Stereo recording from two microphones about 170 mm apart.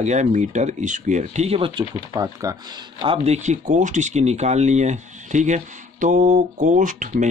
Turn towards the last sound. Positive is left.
turn(degrees=-50)  # may be behind; listen again after turning